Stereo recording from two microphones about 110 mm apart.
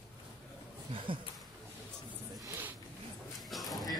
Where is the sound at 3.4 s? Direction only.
Centre (ahead or behind).